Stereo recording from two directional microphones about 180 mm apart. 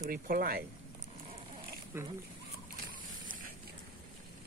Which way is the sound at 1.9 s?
15° right (ahead or behind).